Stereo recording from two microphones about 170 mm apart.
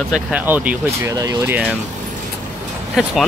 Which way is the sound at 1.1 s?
20° right (ahead or behind).